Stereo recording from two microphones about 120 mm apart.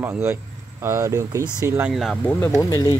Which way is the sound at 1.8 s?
Centre (ahead or behind).